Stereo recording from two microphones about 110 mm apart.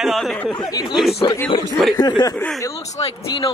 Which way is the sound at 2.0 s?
35° left (ahead or behind).